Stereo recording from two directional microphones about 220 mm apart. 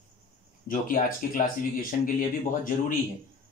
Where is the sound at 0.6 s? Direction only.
40° left (ahead or behind).